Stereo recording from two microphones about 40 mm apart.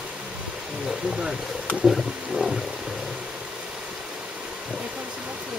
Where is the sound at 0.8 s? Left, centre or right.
Centre.